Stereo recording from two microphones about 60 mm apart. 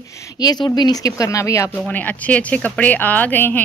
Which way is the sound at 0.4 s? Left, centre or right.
Left.